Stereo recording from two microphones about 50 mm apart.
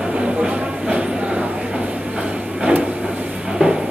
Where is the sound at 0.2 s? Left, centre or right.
Centre.